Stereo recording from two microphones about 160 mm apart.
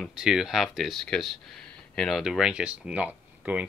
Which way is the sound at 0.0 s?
5° right (ahead or behind).